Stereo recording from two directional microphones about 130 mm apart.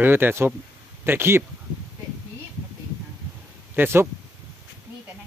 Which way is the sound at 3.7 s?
15° right (ahead or behind).